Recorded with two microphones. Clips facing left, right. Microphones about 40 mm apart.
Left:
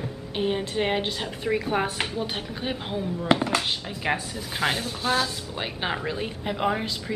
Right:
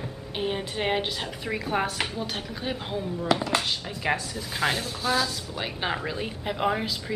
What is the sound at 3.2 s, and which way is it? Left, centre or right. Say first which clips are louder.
Speech: left 3 dB; left.